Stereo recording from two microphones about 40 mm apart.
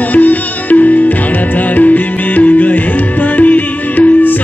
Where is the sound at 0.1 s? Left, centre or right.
Left.